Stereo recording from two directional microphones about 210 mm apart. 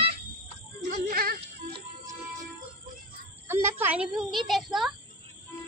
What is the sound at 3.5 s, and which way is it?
A child's voice, 10° right (ahead or behind).